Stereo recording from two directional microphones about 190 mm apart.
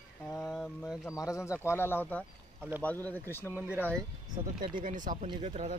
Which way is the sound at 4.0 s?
25° right (ahead or behind).